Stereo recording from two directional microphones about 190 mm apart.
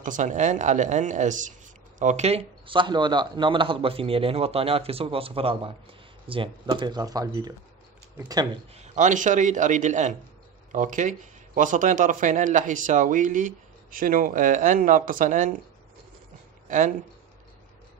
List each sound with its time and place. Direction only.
0.0 s speech: 40° right (ahead or behind); by 8.5 s 20° right (ahead or behind)
8.7 s speech: 35° right (ahead or behind)
16.6 s speech: 40° right (ahead or behind)